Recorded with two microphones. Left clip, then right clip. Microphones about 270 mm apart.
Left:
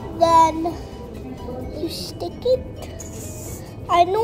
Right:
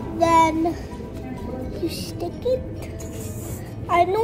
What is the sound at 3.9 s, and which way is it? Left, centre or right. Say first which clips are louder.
Speech: left 2 dB; centre.